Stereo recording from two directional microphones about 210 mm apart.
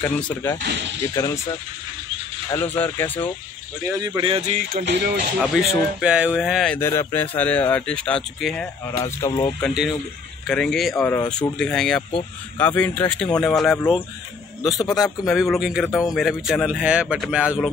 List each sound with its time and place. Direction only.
0.0 s speech: 10° left (ahead or behind)
0.6 s speech: 55° right (ahead or behind)
1.0 s speech: 15° left (ahead or behind)
2.5 s speech: 10° left (ahead or behind)
3.8 s speech: 15° right (ahead or behind)
4.7 s music: 50° right (ahead or behind)
5.4 s speech: centre (ahead or behind)
9.0 s speech: 15° left (ahead or behind)
10.4 s speech: centre (ahead or behind)
15.2 s speech: centre (ahead or behind)